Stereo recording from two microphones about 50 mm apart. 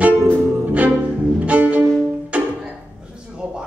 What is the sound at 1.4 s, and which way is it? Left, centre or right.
Music, right.